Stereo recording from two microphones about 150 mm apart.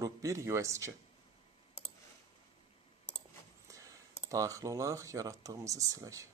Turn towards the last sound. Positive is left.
turn(degrees=-20)  # may be behind; listen again after turning